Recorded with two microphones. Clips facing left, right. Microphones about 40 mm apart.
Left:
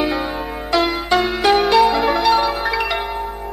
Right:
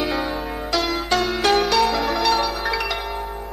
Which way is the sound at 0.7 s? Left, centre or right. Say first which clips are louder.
Left 5 dB; centre.